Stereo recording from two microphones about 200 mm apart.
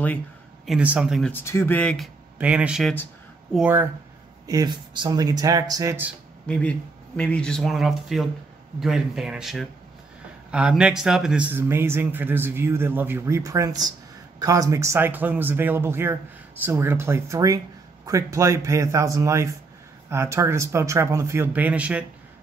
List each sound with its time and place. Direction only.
0.7 s speech: 5° right (ahead or behind)
1.3 s speech: 15° left (ahead or behind)
2.3 s speech: 5° right (ahead or behind)
4.5 s speech: 20° right (ahead or behind)
6.4 s speech: 5° left (ahead or behind)